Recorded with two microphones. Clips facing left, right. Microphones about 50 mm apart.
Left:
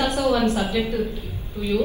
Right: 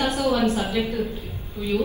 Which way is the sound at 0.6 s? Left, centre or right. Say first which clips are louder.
Left 1 dB; right.